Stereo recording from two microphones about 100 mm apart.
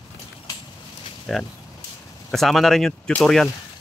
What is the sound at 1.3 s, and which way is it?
Speech, 5° left (ahead or behind).